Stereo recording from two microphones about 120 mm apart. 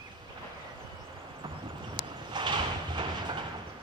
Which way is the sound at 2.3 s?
40° right (ahead or behind).